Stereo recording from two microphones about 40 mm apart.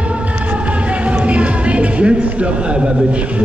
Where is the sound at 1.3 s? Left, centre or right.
Right.